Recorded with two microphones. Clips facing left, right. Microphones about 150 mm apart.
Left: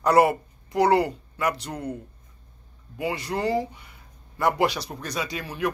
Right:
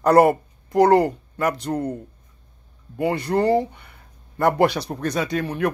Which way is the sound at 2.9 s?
55° right (ahead or behind).